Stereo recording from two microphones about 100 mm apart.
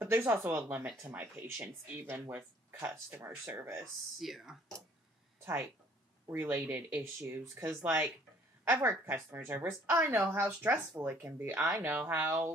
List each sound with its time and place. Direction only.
0.0 s speech: 25° right (ahead or behind)
3.8 s speech: centre (ahead or behind)
6.3 s speech: 25° right (ahead or behind)